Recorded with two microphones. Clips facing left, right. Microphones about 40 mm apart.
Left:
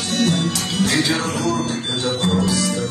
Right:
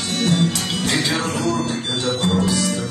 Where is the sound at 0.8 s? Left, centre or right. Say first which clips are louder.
Left 1 dB; centre.